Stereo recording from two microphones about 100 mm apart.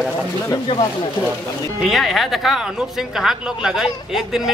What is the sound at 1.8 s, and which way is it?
Speech, centre (ahead or behind).